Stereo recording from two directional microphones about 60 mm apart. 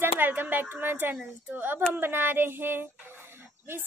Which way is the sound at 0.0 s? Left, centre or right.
Right.